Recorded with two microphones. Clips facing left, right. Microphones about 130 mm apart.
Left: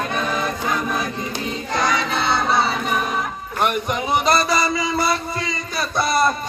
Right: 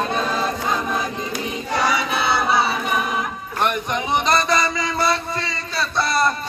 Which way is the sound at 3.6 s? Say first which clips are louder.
Left 1 dB; 5° left (ahead or behind).